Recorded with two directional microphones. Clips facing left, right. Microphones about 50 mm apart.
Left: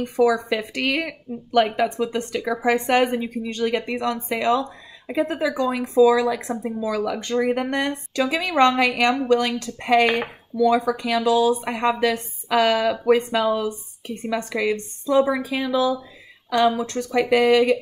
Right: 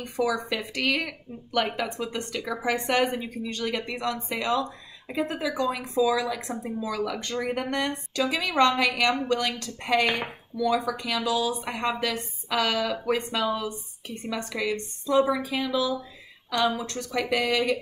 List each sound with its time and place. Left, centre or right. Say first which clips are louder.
0.2 s a woman's voice: left 7 dB; left
13.4 s a woman's voice: left 6 dB; left